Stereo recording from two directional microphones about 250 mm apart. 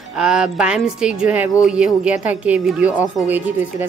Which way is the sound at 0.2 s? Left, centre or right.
Centre.